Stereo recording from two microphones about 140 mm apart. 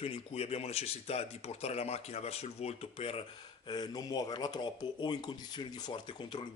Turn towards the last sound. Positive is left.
turn(degrees=35)  # may be behind; listen again after turning